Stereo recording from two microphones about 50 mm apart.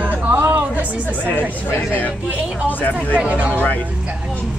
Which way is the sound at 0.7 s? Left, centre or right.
Right.